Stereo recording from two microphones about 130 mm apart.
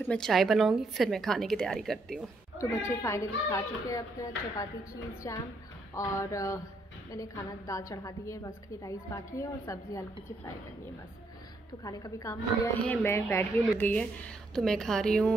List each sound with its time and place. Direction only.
0.0 s a woman's voice: 5° left (ahead or behind)
2.9 s speech: 20° left (ahead or behind)
11.8 s speech: 25° left (ahead or behind)
12.8 s speech: 15° left (ahead or behind)